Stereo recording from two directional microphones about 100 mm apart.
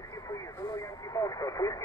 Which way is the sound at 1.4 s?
35° left (ahead or behind).